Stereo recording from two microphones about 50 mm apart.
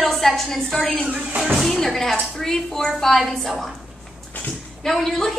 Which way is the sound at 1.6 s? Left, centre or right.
Centre.